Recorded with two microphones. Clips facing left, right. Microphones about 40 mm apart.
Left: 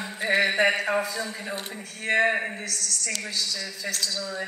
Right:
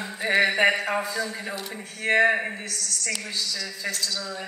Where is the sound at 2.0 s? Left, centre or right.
Right.